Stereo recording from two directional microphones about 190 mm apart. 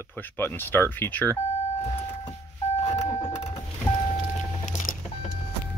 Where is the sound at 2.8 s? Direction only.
35° left (ahead or behind).